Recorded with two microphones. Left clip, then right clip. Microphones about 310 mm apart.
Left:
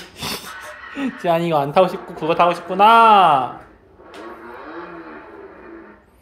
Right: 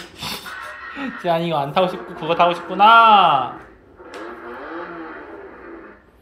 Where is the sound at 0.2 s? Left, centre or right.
Centre.